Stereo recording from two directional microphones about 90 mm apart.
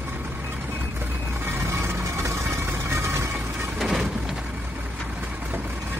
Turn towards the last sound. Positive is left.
turn(degrees=0)  # may be behind; listen again after turning